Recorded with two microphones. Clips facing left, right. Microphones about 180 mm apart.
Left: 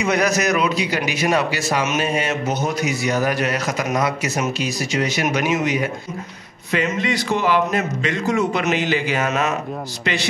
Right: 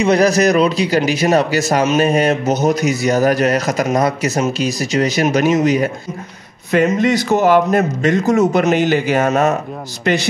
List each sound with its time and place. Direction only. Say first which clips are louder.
0.0 s a man's voice: right 7 dB; 30° right (ahead or behind)